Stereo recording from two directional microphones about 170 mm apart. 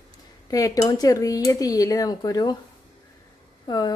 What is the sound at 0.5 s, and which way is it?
A woman's voice, 20° left (ahead or behind).